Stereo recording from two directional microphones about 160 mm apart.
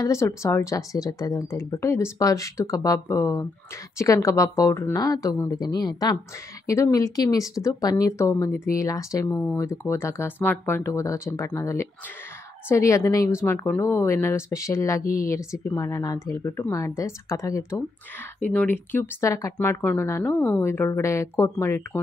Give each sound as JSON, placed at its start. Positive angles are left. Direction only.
{"t": 0.0, "sound": "speech", "side_deg": 20}